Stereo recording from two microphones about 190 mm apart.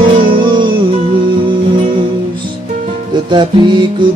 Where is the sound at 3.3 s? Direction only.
25° right (ahead or behind).